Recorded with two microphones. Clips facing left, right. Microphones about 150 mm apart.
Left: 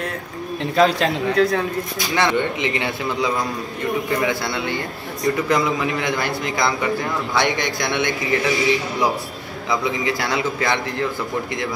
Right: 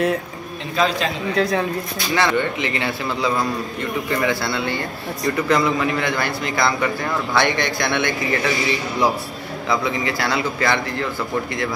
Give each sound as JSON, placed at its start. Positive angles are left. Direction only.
{"t": 0.7, "sound": "a man's voice", "side_deg": 70}
{"t": 1.3, "sound": "speech", "side_deg": 0}
{"t": 2.1, "sound": "a man's voice", "side_deg": 20}
{"t": 9.7, "sound": "a man's voice", "side_deg": 15}